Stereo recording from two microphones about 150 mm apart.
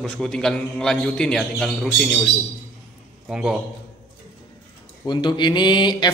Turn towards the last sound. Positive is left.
turn(degrees=30)  # may be behind; listen again after turning